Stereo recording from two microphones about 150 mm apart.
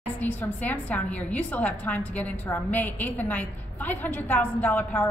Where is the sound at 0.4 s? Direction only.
10° left (ahead or behind).